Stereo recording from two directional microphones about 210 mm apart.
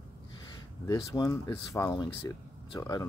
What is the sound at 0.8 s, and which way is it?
Speech, 15° left (ahead or behind).